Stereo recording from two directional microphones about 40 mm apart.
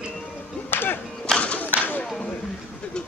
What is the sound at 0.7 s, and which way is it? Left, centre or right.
Music, left.